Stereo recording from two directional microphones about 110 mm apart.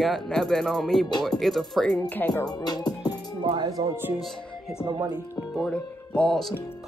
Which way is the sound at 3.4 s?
45° right (ahead or behind).